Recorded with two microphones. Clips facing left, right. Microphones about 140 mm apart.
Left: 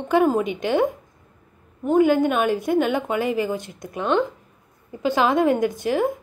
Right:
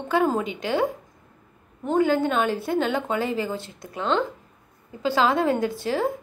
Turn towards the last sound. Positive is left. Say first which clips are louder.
# left 3 dB
turn(degrees=15)  # may be behind; listen again after turning